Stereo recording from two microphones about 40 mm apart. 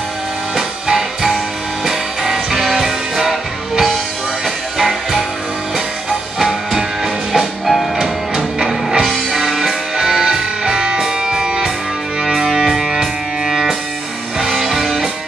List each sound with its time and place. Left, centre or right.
0.6 s music: centre
8.5 s music: centre